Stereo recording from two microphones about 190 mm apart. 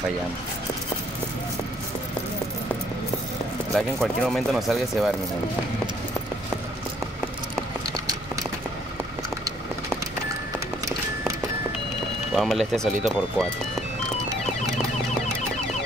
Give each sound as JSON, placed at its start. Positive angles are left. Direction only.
{"t": 3.7, "sound": "speech", "side_deg": 0}
{"t": 12.4, "sound": "speech", "side_deg": 0}